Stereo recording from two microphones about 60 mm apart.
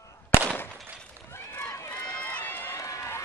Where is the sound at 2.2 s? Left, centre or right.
Left.